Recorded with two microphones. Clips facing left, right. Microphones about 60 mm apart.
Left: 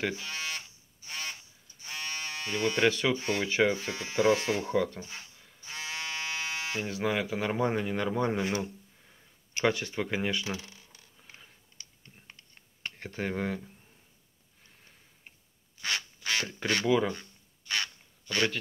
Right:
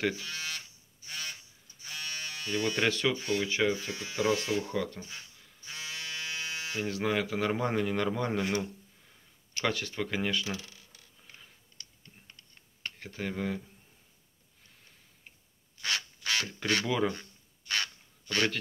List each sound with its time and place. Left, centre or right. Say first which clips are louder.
0.2 s electric shaver: left 2 dB; left
3.2 s speech: left 2 dB; left
5.7 s electric shaver: left 3 dB; left
6.8 s speech: right 1 dB; centre
9.6 s speech: left 3 dB; left
11.2 s a sound: left 1 dB; centre
12.9 s speech: left 3 dB; left
15.8 s duck: even; centre